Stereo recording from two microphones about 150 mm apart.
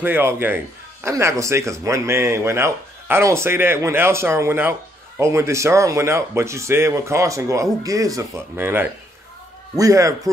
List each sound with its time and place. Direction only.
0.0 s speech: 15° right (ahead or behind)